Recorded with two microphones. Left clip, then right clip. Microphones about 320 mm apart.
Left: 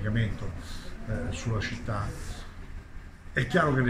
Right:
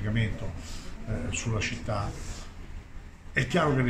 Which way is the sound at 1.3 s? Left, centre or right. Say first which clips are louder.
Right 6 dB; centre.